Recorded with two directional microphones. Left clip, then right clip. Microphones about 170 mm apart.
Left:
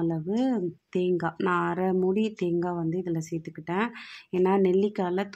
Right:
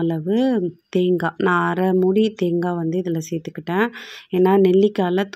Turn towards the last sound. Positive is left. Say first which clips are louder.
# right 9 dB
turn(degrees=-25)  # may be behind; listen again after turning